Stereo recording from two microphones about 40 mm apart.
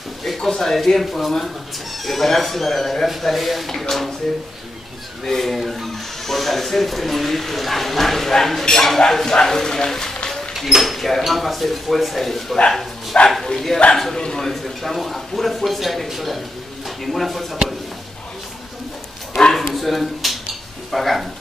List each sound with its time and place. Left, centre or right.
0.2 s speech: centre
5.2 s speech: centre
10.5 s speech: centre
14.2 s speech: centre
14.5 s speech: centre
19.3 s bow-wow: centre
19.7 s a sound: centre
20.9 s speech: centre